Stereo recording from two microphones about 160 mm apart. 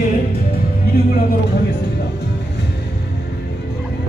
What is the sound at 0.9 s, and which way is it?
Speech, 70° left (ahead or behind).